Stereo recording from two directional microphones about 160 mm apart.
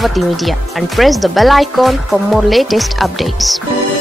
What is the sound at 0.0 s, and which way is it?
Speech, centre (ahead or behind).